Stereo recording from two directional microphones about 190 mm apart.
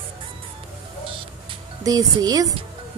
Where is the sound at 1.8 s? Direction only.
20° right (ahead or behind).